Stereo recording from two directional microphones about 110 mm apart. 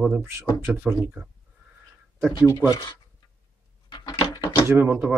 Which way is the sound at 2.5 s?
40° left (ahead or behind).